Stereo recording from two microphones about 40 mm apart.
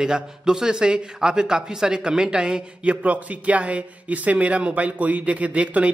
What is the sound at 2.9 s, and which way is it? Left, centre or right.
A man's voice, right.